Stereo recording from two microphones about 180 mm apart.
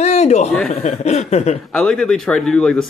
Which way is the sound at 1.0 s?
40° left (ahead or behind).